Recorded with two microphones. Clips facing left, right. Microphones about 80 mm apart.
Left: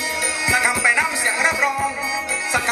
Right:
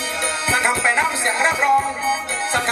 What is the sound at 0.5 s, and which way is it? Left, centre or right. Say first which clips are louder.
Music: even; centre.